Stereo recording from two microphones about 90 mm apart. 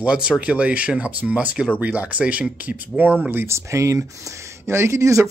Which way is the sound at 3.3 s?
30° right (ahead or behind).